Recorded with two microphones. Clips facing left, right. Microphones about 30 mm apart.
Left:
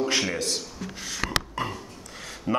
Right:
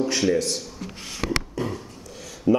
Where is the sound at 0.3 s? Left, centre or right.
Left.